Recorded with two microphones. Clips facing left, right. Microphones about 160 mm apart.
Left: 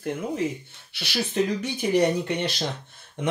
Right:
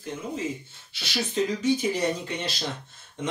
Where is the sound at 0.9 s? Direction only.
60° left (ahead or behind).